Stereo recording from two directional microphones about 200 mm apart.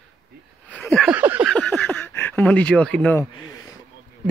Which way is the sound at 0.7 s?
5° left (ahead or behind).